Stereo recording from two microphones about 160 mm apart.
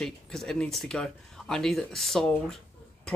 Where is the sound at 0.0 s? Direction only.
5° left (ahead or behind).